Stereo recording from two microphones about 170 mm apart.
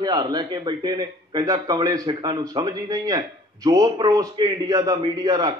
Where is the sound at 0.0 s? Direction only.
25° right (ahead or behind).